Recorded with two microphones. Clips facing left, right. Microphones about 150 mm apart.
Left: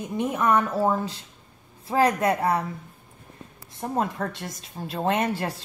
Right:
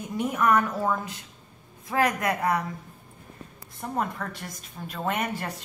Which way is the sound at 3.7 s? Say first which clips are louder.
Left 3 dB; 25° left (ahead or behind).